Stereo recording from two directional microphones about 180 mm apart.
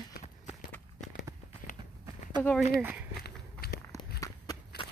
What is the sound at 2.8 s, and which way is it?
Speech, 10° right (ahead or behind).